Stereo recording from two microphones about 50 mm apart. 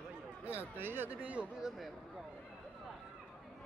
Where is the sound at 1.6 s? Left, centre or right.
Centre.